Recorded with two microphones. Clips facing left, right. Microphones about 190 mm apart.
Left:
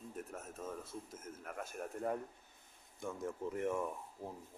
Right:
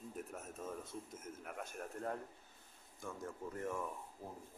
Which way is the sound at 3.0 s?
20° left (ahead or behind).